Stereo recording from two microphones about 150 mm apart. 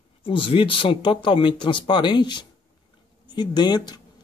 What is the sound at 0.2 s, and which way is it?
Speech, 35° left (ahead or behind).